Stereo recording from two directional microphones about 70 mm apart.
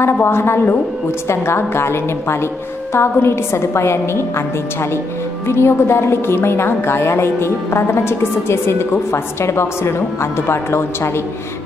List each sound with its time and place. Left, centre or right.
0.0 s a woman's voice: left
5.5 s a woman's voice: left